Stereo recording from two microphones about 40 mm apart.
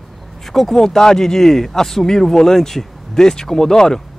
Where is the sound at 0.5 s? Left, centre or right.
Centre.